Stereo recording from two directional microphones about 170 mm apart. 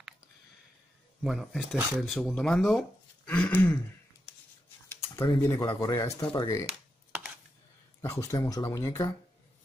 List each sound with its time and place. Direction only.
1.2 s speech: centre (ahead or behind)
3.3 s throat clearing: 10° left (ahead or behind)
5.4 s throat clearing: 15° left (ahead or behind)
5.7 s speech: 20° left (ahead or behind)
6.1 s throat clearing: 20° left (ahead or behind)
8.0 s speech: 20° left (ahead or behind)